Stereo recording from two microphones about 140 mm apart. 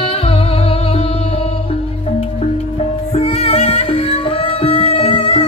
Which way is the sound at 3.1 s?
45° left (ahead or behind).